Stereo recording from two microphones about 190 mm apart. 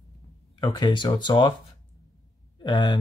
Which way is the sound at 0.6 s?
20° left (ahead or behind).